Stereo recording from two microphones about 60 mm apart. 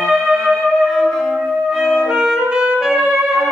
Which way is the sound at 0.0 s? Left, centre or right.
Centre.